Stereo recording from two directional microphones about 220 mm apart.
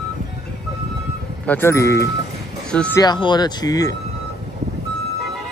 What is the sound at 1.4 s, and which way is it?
Speech, 10° left (ahead or behind).